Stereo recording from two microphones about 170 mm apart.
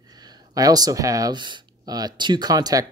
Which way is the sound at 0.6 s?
20° right (ahead or behind).